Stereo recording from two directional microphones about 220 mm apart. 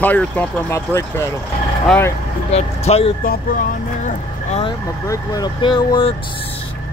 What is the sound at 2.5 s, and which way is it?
Speech, 30° left (ahead or behind).